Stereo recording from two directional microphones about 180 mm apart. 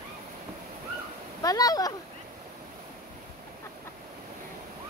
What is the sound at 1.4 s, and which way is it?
Speech, 20° left (ahead or behind).